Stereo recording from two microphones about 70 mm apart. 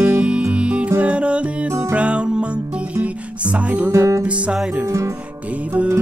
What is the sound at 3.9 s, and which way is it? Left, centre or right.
Music, right.